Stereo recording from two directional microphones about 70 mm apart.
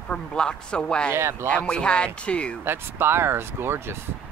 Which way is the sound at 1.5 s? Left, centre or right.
Centre.